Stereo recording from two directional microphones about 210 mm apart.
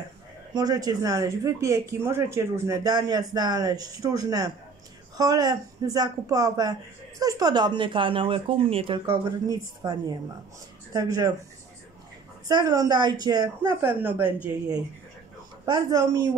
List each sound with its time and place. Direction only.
0.6 s speech: 20° right (ahead or behind)
12.4 s speech: 15° right (ahead or behind)
15.6 s speech: 20° right (ahead or behind)